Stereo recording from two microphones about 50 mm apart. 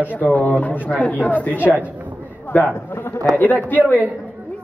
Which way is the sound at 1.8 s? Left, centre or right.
Right.